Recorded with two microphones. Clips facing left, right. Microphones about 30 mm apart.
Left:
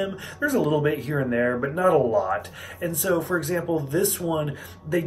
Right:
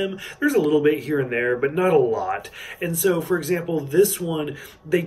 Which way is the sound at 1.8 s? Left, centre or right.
Right.